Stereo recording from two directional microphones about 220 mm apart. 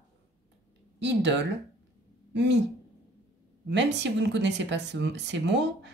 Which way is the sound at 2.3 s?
50° right (ahead or behind).